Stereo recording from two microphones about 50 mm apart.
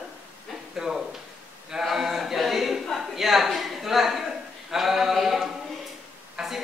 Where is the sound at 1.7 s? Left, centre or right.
Centre.